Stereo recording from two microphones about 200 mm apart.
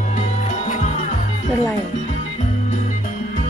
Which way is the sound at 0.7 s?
35° left (ahead or behind).